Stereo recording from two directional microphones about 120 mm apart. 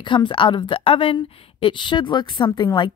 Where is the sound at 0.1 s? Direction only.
40° left (ahead or behind).